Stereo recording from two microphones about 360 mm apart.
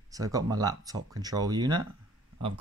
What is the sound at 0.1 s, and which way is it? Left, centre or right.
Speech, centre.